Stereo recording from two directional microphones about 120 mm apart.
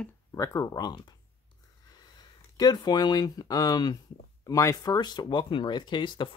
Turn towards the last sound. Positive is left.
turn(degrees=40)  # may be behind; listen again after turning